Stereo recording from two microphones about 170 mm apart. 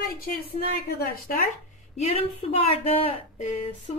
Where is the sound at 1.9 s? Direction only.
40° left (ahead or behind).